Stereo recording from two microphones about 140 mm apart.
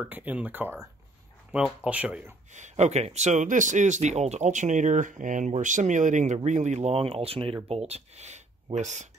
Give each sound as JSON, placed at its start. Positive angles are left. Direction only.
{"t": 0.0, "sound": "speech", "side_deg": -10}
{"t": 1.9, "sound": "speech", "side_deg": -10}
{"t": 2.5, "sound": "speech", "side_deg": -55}